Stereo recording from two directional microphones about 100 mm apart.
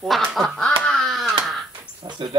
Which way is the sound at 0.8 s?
5° left (ahead or behind).